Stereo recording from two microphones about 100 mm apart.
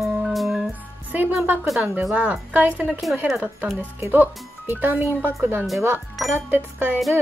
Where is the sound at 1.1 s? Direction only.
20° right (ahead or behind).